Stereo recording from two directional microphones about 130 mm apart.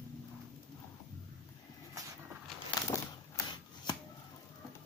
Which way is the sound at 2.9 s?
25° left (ahead or behind).